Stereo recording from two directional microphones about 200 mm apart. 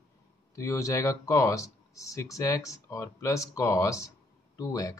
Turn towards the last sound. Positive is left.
turn(degrees=15)  # may be behind; listen again after turning